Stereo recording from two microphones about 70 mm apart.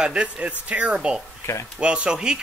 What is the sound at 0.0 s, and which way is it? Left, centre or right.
Speech, centre.